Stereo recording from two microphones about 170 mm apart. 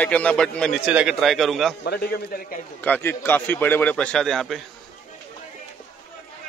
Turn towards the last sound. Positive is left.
turn(degrees=0)  # may be behind; listen again after turning